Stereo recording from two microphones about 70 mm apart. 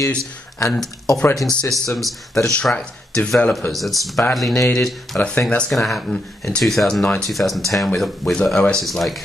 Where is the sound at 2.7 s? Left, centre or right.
Centre.